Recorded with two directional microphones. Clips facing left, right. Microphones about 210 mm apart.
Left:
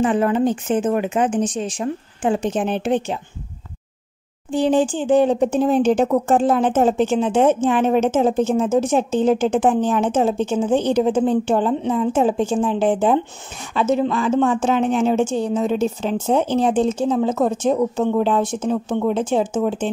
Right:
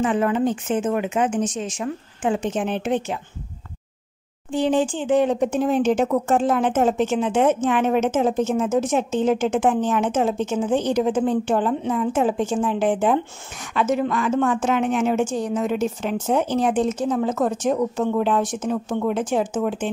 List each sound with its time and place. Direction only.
0.0 s speech: 35° left (ahead or behind)
4.5 s speech: 35° left (ahead or behind)